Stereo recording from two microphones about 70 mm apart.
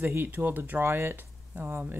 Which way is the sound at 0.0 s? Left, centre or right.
Right.